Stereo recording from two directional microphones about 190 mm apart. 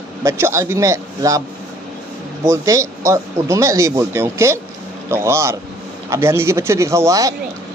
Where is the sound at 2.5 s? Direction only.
15° right (ahead or behind).